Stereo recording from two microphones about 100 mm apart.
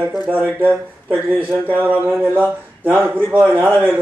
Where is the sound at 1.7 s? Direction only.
15° right (ahead or behind).